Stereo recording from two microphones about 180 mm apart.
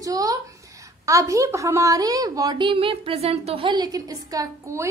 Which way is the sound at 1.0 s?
15° right (ahead or behind).